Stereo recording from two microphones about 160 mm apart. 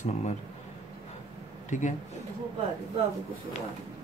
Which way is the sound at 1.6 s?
50° left (ahead or behind).